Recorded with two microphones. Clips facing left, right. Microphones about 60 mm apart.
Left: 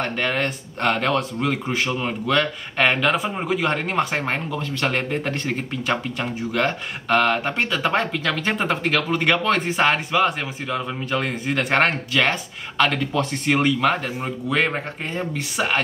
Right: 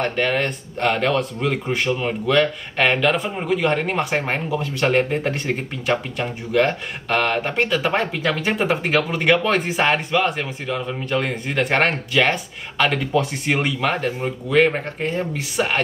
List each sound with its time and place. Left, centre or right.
0.0 s speech: centre
9.2 s speech: centre